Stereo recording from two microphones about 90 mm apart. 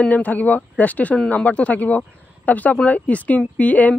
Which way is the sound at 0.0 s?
20° left (ahead or behind).